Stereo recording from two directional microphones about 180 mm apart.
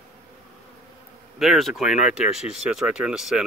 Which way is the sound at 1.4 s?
Centre (ahead or behind).